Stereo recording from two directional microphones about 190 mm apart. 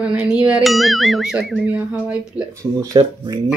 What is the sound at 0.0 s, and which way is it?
Speech, 5° right (ahead or behind).